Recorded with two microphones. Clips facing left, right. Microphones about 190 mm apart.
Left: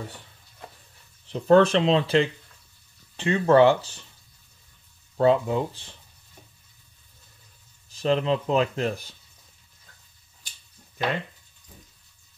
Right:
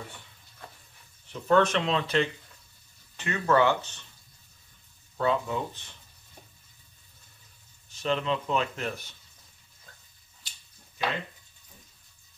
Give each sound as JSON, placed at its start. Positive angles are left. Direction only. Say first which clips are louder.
{"t": 1.3, "sound": "speech", "louder": "left 6 dB", "side_deg": 30}
{"t": 5.1, "sound": "speech", "louder": "left 7 dB", "side_deg": 30}
{"t": 7.9, "sound": "speech", "louder": "left 5 dB", "side_deg": 35}